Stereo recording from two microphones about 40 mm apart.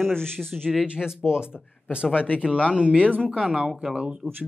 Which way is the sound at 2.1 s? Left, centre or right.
Left.